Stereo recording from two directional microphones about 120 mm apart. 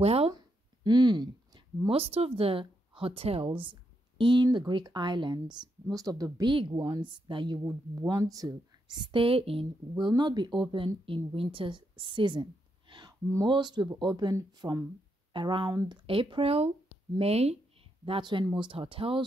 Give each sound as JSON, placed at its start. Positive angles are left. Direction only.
{"t": 0.0, "sound": "speech", "side_deg": -55}
{"t": 0.8, "sound": "speech", "side_deg": -40}
{"t": 2.0, "sound": "a woman's voice", "side_deg": -55}
{"t": 6.5, "sound": "speech", "side_deg": -45}
{"t": 7.6, "sound": "a woman's voice", "side_deg": -25}
{"t": 15.3, "sound": "a woman's voice", "side_deg": -40}
{"t": 16.1, "sound": "speech", "side_deg": -50}
{"t": 18.0, "sound": "speech", "side_deg": -45}